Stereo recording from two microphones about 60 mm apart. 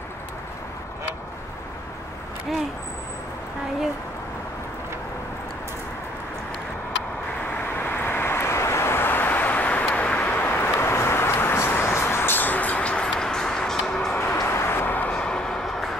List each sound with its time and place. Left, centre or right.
7.6 s vehicle: left
10.5 s vehicle: left; by 13.1 s centre
13.2 s a sound: centre
14.5 s vehicle: left; by 15.6 s centre